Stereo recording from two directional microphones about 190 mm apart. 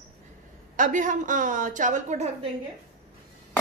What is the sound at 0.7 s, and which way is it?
A woman's voice, 40° right (ahead or behind).